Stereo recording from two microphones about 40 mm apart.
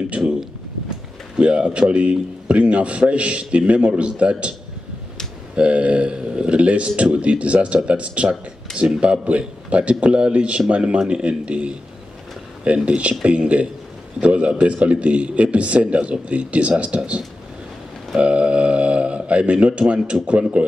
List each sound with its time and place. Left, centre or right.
0.2 s speech: centre
1.4 s a man's voice: right
5.6 s a man's voice: right
8.7 s speech: centre
9.0 s a man's voice: right
18.2 s a man's voice: right